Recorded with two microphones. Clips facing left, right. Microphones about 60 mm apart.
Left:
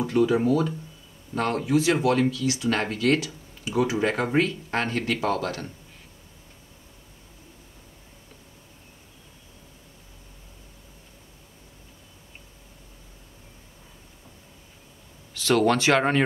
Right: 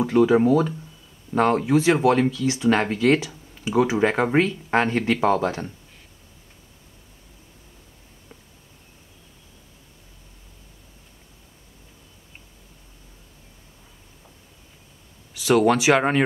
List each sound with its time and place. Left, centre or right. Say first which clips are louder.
0.0 s speech: right 4 dB; centre
2.4 s speech: right 4 dB; right
2.7 s speech: right 5 dB; centre
15.3 s speech: right 3 dB; centre